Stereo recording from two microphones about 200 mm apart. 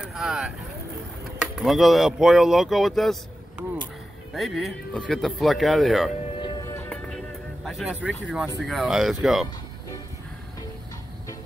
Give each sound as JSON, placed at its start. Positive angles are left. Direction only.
{"t": 0.0, "sound": "speech", "side_deg": -5}
{"t": 6.4, "sound": "music", "side_deg": 20}
{"t": 6.9, "sound": "music", "side_deg": 5}
{"t": 8.5, "sound": "speech", "side_deg": 0}